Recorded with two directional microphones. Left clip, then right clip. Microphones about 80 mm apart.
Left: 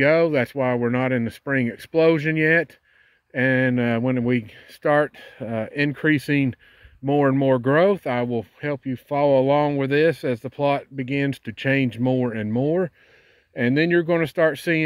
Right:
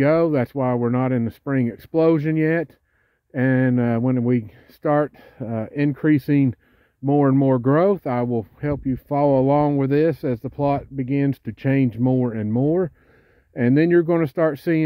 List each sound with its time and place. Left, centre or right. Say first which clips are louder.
0.0 s speech: even; right
3.3 s speech: left 1 dB; right
3.7 s speech: right 1 dB; right
4.1 s speech: right 1 dB; right
5.4 s speech: even; right
7.0 s speech: right 1 dB; centre
7.3 s speech: even; right
8.8 s speech: right 1 dB; right
12.3 s speech: even; right
13.6 s speech: right 2 dB; right
14.4 s speech: even; right